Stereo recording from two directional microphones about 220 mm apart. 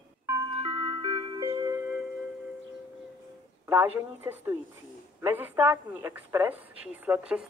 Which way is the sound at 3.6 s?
10° right (ahead or behind).